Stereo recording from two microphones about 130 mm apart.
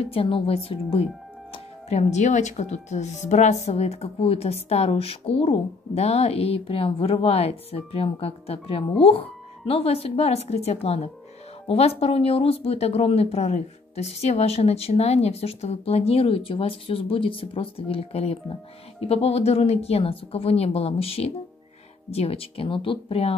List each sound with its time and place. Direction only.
0.0 s speech: 45° left (ahead or behind)